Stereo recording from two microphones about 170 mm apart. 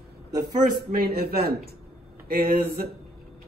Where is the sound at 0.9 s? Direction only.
65° right (ahead or behind).